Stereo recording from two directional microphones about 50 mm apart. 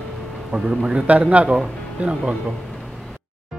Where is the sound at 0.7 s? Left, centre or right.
Right.